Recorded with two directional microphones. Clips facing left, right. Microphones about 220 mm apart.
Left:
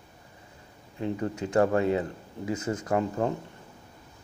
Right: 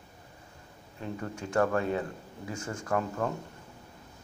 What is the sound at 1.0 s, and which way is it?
Speech, 20° left (ahead or behind).